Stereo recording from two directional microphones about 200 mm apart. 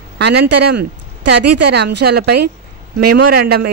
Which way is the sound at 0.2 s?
55° right (ahead or behind).